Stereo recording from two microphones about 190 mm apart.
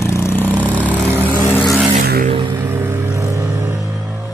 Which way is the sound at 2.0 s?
50° right (ahead or behind).